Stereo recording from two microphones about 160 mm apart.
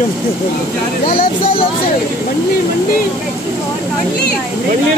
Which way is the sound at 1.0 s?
35° left (ahead or behind).